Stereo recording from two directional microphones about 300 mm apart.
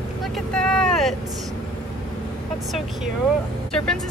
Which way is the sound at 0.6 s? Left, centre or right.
Centre.